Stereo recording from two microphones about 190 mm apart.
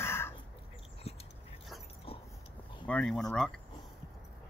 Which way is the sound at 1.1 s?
35° left (ahead or behind).